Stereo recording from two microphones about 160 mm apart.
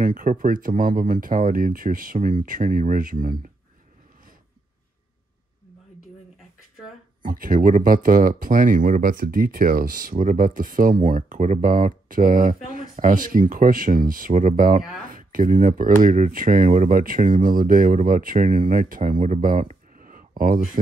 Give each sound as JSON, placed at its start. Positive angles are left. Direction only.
{"t": 0.0, "sound": "speech", "side_deg": -60}
{"t": 7.2, "sound": "speech", "side_deg": -60}